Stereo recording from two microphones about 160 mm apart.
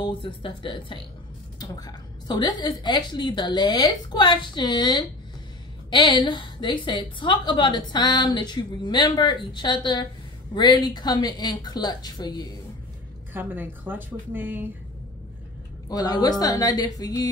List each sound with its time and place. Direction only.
0.0 s a woman's voice: 30° left (ahead or behind)
13.3 s a woman's voice: 10° right (ahead or behind)
15.9 s a woman's voice: 25° left (ahead or behind)